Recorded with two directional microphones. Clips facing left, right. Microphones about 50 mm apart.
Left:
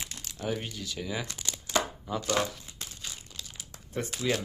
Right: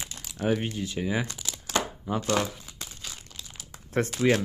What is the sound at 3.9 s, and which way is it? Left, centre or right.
Speech, right.